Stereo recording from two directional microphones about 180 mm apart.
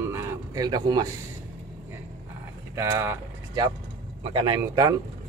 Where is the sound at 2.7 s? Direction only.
15° right (ahead or behind).